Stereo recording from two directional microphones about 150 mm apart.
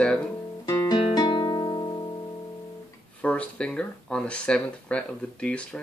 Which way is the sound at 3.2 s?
10° left (ahead or behind).